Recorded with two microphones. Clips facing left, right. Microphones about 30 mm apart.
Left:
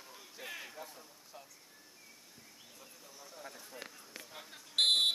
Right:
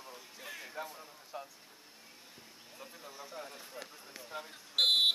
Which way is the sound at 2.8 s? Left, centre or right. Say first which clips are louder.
Right 8 dB; right.